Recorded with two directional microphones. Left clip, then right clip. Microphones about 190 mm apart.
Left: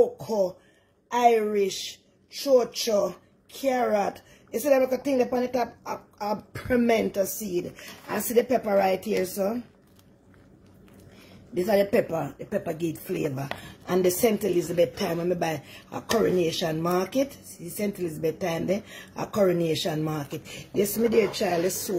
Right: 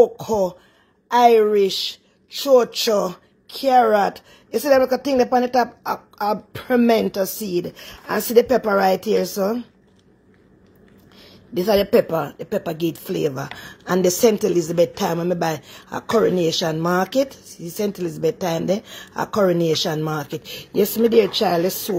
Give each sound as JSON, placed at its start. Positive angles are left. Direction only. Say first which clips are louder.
{"t": 0.0, "sound": "a woman's voice", "louder": "right 7 dB", "side_deg": -35}
{"t": 11.5, "sound": "a woman's voice", "louder": "right 6 dB", "side_deg": -30}
{"t": 13.8, "sound": "a woman's voice", "louder": "right 6 dB", "side_deg": -30}